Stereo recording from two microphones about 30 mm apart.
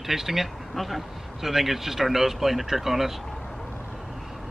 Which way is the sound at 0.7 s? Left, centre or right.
Centre.